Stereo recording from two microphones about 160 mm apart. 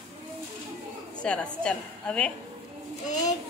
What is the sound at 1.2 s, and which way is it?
A woman's voice, 5° left (ahead or behind).